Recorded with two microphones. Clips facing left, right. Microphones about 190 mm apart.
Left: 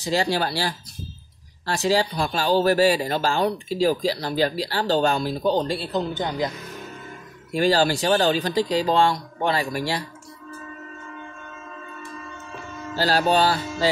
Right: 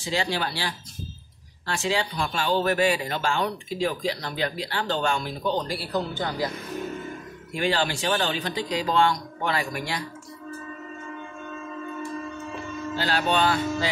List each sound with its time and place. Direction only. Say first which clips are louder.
0.0 s speech: left 4 dB; 40° left (ahead or behind); by 6.5 s 20° left (ahead or behind)
7.5 s speech: left 6 dB; 35° left (ahead or behind)
12.9 s speech: left 5 dB; 35° left (ahead or behind)